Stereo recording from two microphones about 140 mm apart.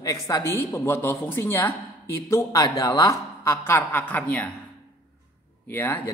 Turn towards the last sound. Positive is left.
turn(degrees=15)  # may be behind; listen again after turning